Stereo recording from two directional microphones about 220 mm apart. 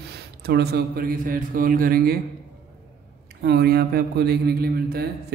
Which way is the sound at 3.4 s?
45° right (ahead or behind).